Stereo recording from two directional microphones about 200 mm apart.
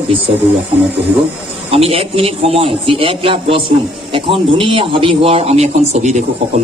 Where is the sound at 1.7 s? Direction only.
30° right (ahead or behind).